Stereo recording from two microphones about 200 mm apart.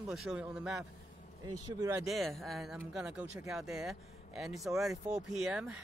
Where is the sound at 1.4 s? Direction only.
15° right (ahead or behind).